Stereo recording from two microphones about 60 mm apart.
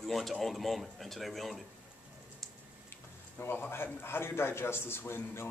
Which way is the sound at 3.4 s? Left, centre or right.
Left.